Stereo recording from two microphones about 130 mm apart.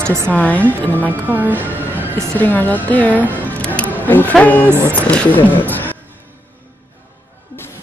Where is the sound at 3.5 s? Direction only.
10° left (ahead or behind).